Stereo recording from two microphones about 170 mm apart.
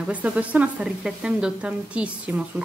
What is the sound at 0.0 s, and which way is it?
A woman's voice, 10° right (ahead or behind).